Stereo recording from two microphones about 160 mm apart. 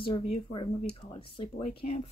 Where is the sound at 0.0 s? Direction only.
30° left (ahead or behind).